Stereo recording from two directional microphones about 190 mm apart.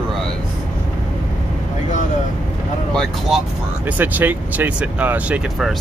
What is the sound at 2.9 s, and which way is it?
Speech, centre (ahead or behind).